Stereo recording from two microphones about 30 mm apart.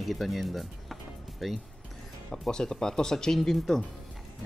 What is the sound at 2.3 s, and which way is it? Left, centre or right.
Speech, left.